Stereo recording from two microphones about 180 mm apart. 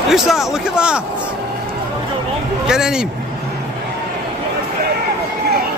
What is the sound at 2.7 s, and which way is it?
Speech, 5° right (ahead or behind).